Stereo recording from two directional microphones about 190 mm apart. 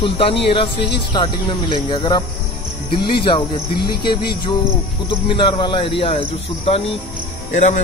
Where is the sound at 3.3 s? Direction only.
25° left (ahead or behind).